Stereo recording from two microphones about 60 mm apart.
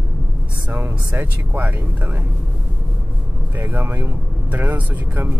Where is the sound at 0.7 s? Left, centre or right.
Right.